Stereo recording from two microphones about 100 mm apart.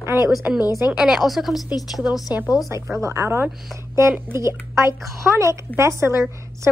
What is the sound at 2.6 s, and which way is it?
A woman's voice, 30° right (ahead or behind).